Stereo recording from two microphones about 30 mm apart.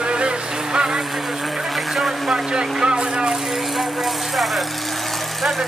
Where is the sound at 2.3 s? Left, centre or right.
Right.